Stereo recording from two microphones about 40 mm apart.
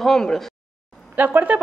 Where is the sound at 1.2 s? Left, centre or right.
Right.